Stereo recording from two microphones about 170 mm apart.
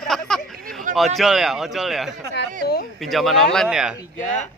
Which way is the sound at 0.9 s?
50° right (ahead or behind).